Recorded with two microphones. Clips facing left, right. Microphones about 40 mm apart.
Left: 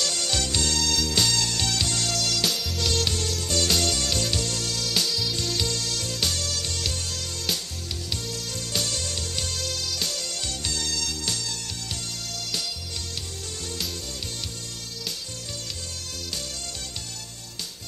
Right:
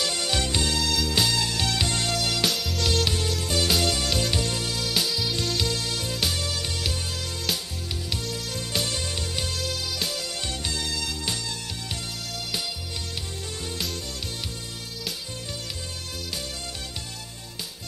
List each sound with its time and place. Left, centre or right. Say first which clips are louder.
0.0 s music: right 1 dB; centre
2.5 s music: right 1 dB; centre